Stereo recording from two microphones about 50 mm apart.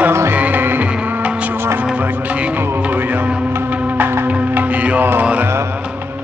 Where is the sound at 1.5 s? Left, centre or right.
Right.